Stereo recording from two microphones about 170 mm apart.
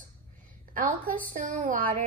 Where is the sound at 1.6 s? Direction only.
50° right (ahead or behind).